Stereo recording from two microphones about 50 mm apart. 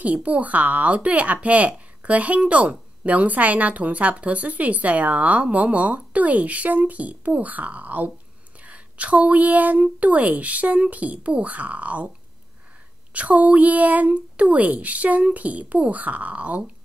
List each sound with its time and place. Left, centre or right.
0.0 s speech: right
13.1 s speech: right